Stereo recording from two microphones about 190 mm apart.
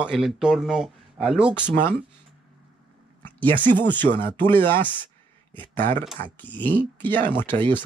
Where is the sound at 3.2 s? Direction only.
10° left (ahead or behind).